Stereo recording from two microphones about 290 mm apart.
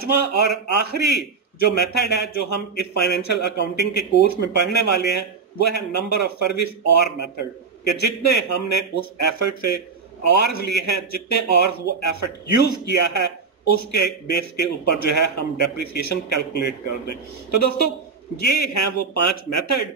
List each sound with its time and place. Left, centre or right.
0.0 s speech: left